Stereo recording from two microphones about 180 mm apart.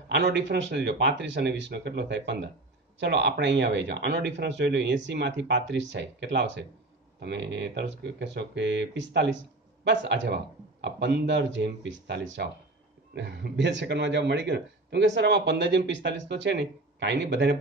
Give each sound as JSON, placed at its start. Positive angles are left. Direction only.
{"t": 0.1, "sound": "speech", "side_deg": -70}